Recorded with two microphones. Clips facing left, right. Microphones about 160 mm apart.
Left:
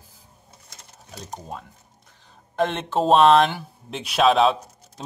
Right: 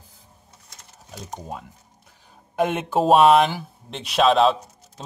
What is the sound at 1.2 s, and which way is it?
Speech, 5° right (ahead or behind).